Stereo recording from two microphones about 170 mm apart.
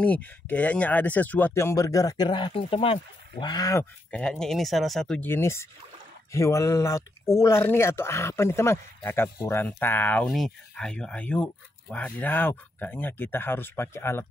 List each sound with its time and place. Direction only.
0.0 s speech: 10° left (ahead or behind)
4.1 s speech: 5° left (ahead or behind)